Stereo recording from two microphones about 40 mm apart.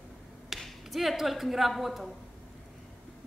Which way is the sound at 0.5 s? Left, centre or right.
Centre.